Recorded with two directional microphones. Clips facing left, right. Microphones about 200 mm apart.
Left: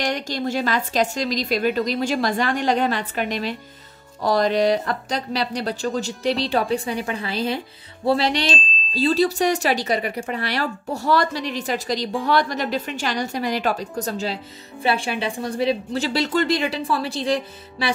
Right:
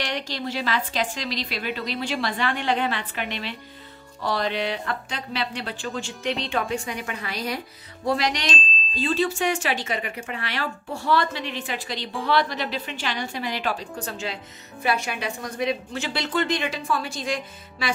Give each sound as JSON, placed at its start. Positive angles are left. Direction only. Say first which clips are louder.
{"t": 0.0, "sound": "a woman's voice", "louder": "left 5 dB", "side_deg": 45}